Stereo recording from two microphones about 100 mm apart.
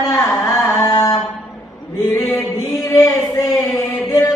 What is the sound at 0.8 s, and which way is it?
Mantra, 40° left (ahead or behind).